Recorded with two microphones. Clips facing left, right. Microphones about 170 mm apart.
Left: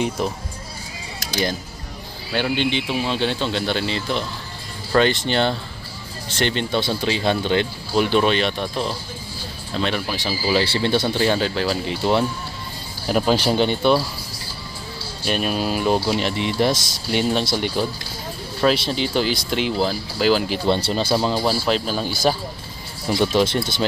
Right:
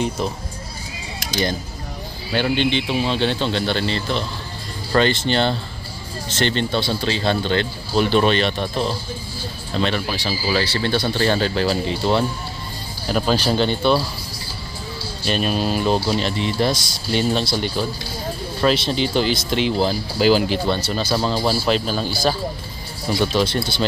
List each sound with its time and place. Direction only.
2.3 s speech: 5° left (ahead or behind)
10.1 s speech: 15° left (ahead or behind)
11.1 s speech: 10° left (ahead or behind)
13.1 s speech: 15° left (ahead or behind)
15.2 s speech: 10° left (ahead or behind)
18.6 s speech: 5° left (ahead or behind)
20.6 s speech: 25° left (ahead or behind)
21.6 s speech: centre (ahead or behind)
23.3 s speech: 20° left (ahead or behind)